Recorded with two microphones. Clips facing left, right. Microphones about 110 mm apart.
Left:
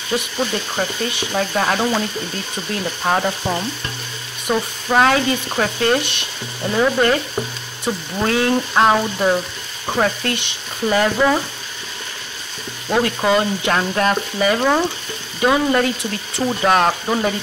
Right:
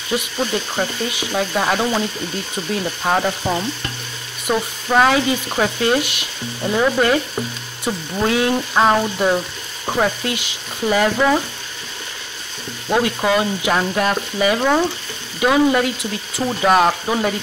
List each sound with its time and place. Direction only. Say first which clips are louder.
0.1 s frying: even; 5° right (ahead or behind)
12.8 s frying: even; 5° right (ahead or behind)